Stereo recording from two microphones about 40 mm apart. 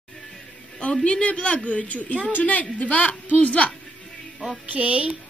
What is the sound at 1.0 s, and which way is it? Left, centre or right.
A woman's voice, left.